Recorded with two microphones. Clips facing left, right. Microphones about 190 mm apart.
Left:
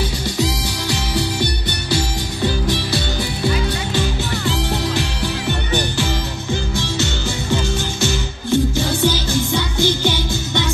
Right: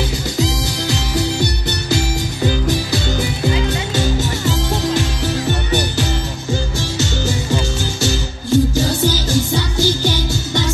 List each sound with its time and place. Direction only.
4.5 s music: 45° right (ahead or behind)